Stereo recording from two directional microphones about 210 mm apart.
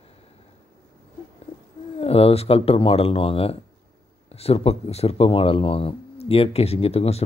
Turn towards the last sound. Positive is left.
turn(degrees=30)  # may be behind; listen again after turning